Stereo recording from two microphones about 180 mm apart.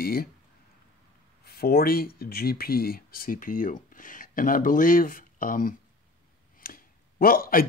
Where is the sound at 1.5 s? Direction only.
55° left (ahead or behind).